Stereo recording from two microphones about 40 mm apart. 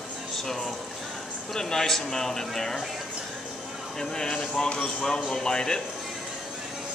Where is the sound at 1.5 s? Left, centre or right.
Centre.